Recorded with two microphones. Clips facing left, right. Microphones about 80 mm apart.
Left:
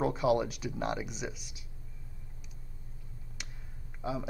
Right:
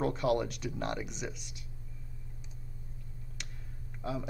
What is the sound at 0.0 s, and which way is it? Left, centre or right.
Speech, centre.